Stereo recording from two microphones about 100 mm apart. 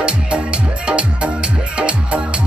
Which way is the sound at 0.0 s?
10° right (ahead or behind).